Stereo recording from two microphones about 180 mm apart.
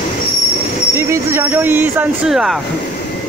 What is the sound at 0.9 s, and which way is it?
Speech, 15° right (ahead or behind).